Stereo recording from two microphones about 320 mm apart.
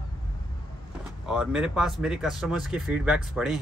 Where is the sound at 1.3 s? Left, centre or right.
Centre.